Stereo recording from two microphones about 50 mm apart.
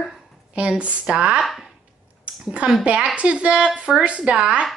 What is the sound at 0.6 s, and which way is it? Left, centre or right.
Speech, right.